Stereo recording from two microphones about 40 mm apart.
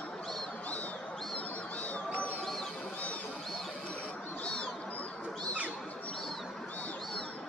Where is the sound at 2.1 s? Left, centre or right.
Left.